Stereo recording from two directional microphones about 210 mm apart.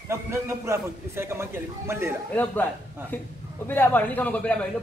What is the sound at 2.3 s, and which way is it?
A man's voice, 10° left (ahead or behind).